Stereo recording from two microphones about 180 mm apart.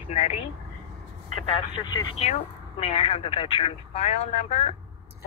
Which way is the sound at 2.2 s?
35° left (ahead or behind).